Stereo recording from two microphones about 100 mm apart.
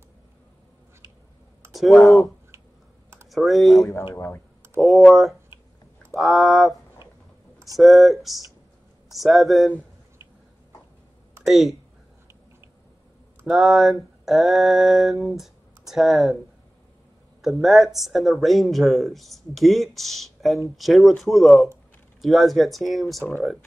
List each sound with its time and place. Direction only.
1.7 s speech: centre (ahead or behind)
4.1 s speech: 25° left (ahead or behind)
4.7 s speech: centre (ahead or behind)
11.4 s speech: centre (ahead or behind)
13.5 s speech: 5° right (ahead or behind)
17.4 s speech: centre (ahead or behind)